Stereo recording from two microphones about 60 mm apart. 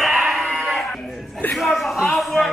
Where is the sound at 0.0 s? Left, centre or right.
Centre.